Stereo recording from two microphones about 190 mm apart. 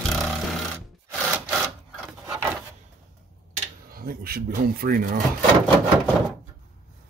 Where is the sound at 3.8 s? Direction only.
50° right (ahead or behind).